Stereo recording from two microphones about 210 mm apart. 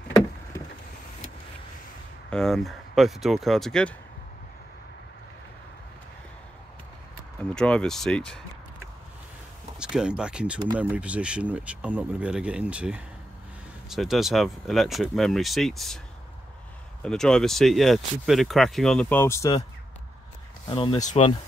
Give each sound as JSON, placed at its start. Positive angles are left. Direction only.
{"t": 2.2, "sound": "speech", "side_deg": 0}
{"t": 7.3, "sound": "speech", "side_deg": 5}
{"t": 9.8, "sound": "speech", "side_deg": -5}
{"t": 17.0, "sound": "speech", "side_deg": 5}
{"t": 20.6, "sound": "speech", "side_deg": 25}